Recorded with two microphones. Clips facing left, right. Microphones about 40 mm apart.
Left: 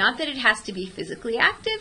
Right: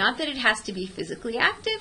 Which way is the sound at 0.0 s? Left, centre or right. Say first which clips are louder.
Left 2 dB; centre.